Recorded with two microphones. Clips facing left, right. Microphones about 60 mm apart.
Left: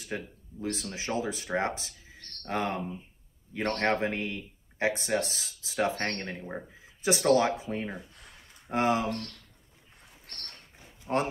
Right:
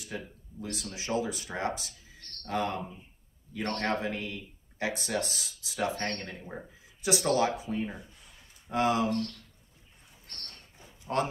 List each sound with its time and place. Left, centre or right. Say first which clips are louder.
0.1 s speech: left 4 dB; left
7.9 s a sound: left 3 dB; left
8.7 s speech: even; left
11.1 s speech: left 1 dB; left